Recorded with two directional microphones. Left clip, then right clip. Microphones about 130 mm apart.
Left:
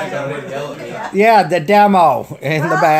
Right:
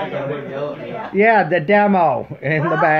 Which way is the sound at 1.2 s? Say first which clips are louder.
Left 3 dB; 15° left (ahead or behind).